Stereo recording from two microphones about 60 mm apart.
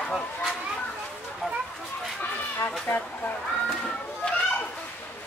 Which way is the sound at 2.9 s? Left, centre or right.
Left.